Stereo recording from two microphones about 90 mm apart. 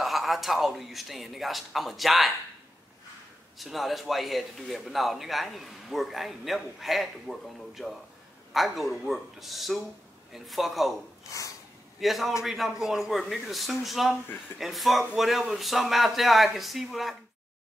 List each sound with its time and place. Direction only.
0.0 s a man's voice: centre (ahead or behind)
3.5 s a man's voice: centre (ahead or behind)
11.2 s snort: 35° left (ahead or behind)
12.0 s a man's voice: centre (ahead or behind)